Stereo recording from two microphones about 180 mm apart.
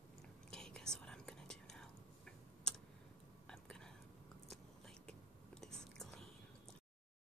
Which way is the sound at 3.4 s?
5° left (ahead or behind).